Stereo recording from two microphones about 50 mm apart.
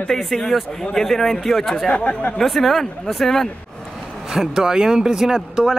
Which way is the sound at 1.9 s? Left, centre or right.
Left.